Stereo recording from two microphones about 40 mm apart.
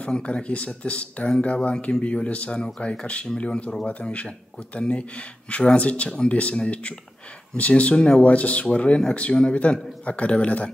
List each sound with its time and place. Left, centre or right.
0.0 s speech: left
2.2 s speech: left
8.2 s speech: left